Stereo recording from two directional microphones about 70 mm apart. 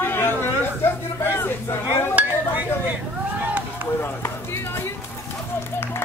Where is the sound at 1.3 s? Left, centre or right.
Left.